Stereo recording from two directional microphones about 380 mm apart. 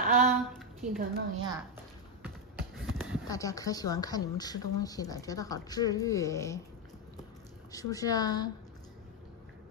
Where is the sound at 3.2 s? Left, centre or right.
Centre.